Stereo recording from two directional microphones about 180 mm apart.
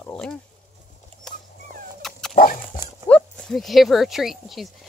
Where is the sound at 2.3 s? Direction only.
50° left (ahead or behind).